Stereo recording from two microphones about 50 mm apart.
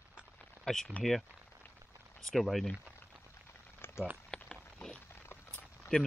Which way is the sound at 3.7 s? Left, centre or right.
Left.